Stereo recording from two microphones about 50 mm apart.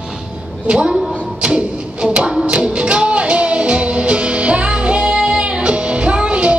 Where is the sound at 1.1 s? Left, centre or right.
Right.